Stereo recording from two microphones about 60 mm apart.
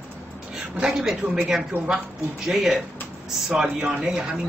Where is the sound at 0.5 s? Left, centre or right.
Centre.